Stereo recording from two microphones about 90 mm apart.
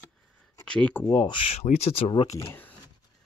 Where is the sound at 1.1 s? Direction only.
50° left (ahead or behind).